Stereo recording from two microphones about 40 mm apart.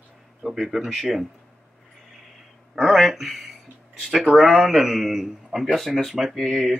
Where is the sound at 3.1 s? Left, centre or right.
Centre.